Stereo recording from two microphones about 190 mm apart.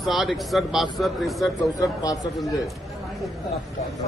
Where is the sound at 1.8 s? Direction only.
20° left (ahead or behind).